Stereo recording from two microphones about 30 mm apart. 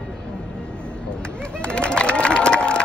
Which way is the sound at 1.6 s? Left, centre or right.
Left.